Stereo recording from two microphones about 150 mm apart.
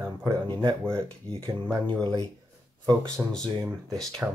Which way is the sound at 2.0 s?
25° right (ahead or behind).